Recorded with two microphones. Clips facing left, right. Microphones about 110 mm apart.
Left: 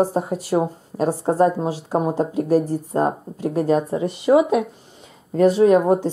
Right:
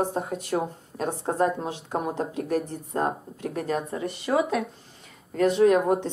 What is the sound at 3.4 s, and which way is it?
Speech, 30° left (ahead or behind).